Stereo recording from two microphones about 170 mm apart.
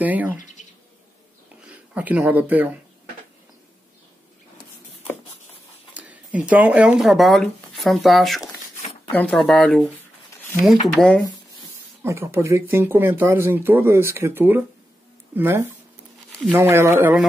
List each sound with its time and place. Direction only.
0.0 s speech: 10° right (ahead or behind)
0.4 s bird: 45° left (ahead or behind)
1.6 s speech: 5° right (ahead or behind)
5.9 s speech: 10° right (ahead or behind)
11.0 s speech: 5° left (ahead or behind)
12.0 s speech: 15° right (ahead or behind)